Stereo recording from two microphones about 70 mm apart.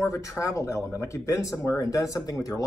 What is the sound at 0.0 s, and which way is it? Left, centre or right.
Speech, left.